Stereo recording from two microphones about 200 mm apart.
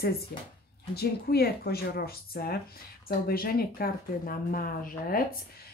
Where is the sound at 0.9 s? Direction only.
50° left (ahead or behind).